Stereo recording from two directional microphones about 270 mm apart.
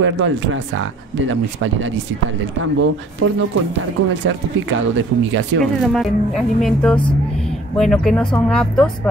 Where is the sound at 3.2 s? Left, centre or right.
Right.